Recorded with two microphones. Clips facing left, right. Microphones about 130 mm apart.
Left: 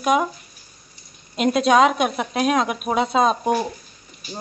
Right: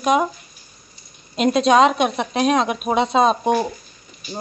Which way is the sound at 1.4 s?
5° left (ahead or behind).